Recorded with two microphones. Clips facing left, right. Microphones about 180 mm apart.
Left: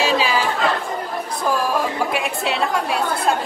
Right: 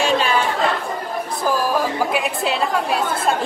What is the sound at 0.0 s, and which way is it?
Chatter, 5° left (ahead or behind).